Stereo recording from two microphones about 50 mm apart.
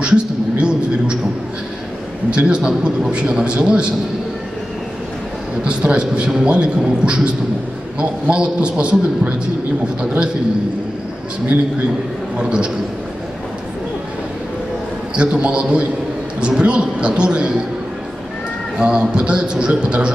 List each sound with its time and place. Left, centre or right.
0.0 s a sound: right
2.3 s a man's voice: right
5.6 s a man's voice: right
12.4 s a man's voice: right
15.1 s a man's voice: right
18.8 s a man's voice: centre